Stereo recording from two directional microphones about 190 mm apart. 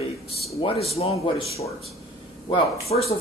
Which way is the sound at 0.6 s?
30° left (ahead or behind).